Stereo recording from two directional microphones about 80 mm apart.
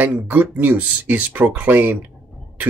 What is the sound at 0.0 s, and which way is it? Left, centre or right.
Speech, centre.